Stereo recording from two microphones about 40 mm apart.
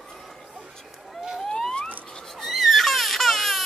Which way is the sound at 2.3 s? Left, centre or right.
Centre.